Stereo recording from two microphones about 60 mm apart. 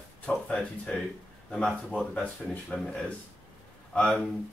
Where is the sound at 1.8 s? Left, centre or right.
Centre.